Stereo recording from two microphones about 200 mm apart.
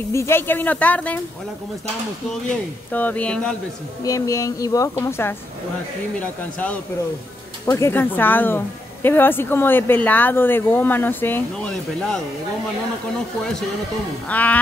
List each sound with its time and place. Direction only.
0.1 s speech: 15° left (ahead or behind)
2.9 s speech: 10° left (ahead or behind)
4.0 s speech: 15° left (ahead or behind)
14.2 s speech: 10° left (ahead or behind)